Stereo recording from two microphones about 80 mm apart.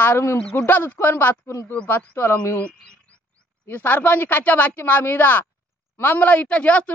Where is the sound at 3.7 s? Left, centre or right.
Left.